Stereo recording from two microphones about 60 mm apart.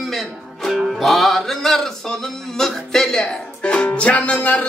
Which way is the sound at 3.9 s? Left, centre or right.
Left.